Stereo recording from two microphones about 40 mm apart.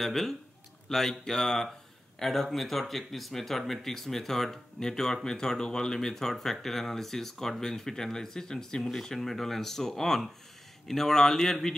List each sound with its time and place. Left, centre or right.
0.0 s speech: centre